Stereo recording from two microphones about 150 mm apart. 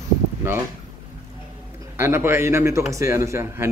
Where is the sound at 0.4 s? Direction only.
15° right (ahead or behind).